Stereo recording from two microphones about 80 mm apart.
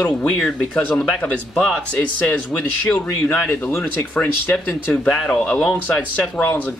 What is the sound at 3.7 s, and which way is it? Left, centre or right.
Speech, left.